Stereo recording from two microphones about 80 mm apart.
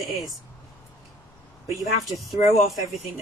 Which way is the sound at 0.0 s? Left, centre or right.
Centre.